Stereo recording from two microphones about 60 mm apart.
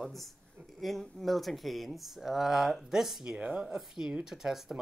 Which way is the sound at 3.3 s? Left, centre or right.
Right.